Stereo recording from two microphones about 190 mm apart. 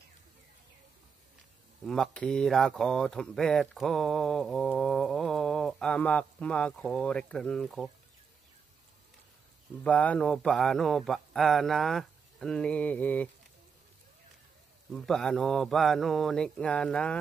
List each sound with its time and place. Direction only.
1.9 s speech: 5° left (ahead or behind)
9.8 s speech: 5° left (ahead or behind)
14.9 s speech: centre (ahead or behind)